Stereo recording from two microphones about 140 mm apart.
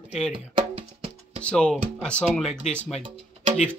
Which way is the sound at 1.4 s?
5° left (ahead or behind).